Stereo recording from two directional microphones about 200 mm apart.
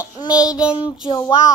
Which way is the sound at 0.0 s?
20° left (ahead or behind).